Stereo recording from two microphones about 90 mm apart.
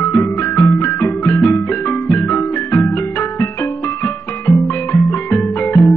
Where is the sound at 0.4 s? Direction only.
30° left (ahead or behind).